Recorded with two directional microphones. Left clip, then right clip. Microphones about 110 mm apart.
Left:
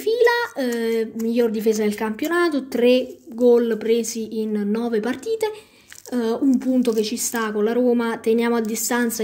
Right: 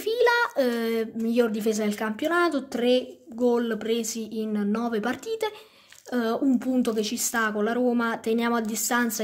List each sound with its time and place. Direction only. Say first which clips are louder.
0.0 s speech: left 4 dB; 25° right (ahead or behind); by 9.1 s 10° right (ahead or behind)